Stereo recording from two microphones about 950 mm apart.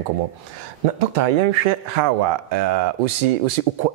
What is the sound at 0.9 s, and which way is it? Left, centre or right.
Speech, right.